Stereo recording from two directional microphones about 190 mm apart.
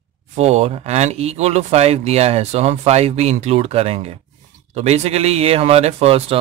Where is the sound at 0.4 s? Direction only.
35° right (ahead or behind).